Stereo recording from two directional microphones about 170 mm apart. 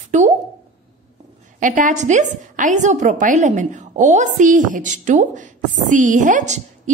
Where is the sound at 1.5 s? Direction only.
50° right (ahead or behind).